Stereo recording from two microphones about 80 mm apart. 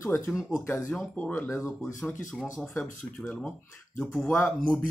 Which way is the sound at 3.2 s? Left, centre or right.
Centre.